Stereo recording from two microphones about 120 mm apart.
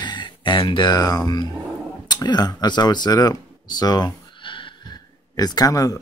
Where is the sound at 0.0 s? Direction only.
40° left (ahead or behind).